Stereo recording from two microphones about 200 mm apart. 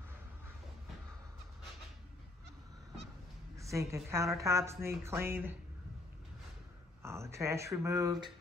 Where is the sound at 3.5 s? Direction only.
15° right (ahead or behind).